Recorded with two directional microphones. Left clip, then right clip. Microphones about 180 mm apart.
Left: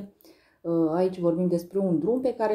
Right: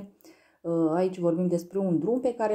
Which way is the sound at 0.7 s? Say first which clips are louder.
Left 1 dB; 25° right (ahead or behind).